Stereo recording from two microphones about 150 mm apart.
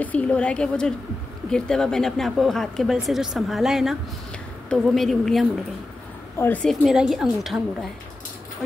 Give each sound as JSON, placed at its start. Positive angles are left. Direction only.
{"t": 0.0, "sound": "a woman's voice", "side_deg": 10}
{"t": 6.3, "sound": "speech", "side_deg": 10}